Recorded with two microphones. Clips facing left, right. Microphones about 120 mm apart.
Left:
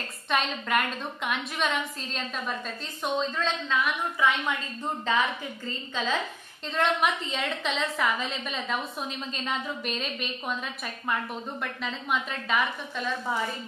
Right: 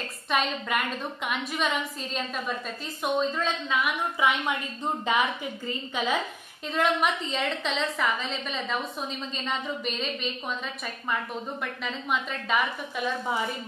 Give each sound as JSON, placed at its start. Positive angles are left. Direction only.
{"t": 0.3, "sound": "a woman's voice", "side_deg": 0}
{"t": 6.7, "sound": "a woman's voice", "side_deg": 0}
{"t": 11.8, "sound": "a woman's voice", "side_deg": 0}
{"t": 12.9, "sound": "a woman's voice", "side_deg": -10}